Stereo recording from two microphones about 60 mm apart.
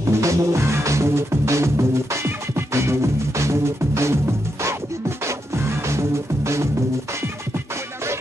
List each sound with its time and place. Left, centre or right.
0.2 s music: right